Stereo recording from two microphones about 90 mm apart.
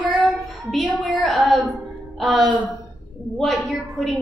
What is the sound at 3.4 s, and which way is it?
Speech, centre (ahead or behind).